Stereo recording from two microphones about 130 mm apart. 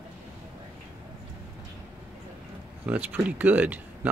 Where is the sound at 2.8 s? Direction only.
10° right (ahead or behind).